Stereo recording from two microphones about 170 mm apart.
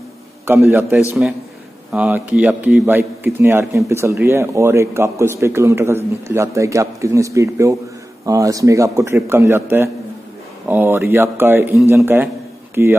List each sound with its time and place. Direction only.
0.7 s a man's voice: 10° right (ahead or behind)